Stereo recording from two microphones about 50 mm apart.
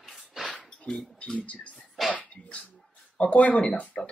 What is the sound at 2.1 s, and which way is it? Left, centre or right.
Dog, left.